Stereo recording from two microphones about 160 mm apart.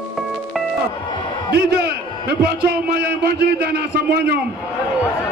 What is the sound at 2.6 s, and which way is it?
A man's voice, 80° right.